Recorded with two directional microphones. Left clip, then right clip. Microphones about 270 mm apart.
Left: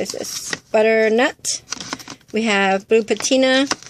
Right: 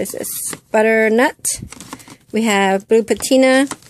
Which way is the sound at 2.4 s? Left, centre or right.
Right.